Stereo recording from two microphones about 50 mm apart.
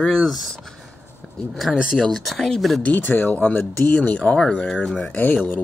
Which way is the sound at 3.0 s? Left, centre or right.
Left.